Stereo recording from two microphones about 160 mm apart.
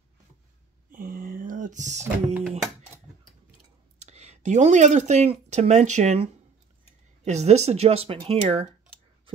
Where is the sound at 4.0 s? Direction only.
45° right (ahead or behind).